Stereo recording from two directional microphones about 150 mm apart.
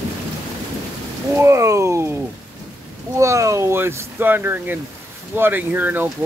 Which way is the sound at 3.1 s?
20° right (ahead or behind).